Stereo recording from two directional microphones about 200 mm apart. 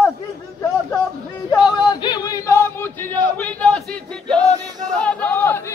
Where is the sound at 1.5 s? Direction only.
20° left (ahead or behind).